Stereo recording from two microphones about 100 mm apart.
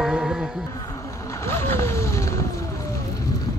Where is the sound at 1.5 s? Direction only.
25° left (ahead or behind).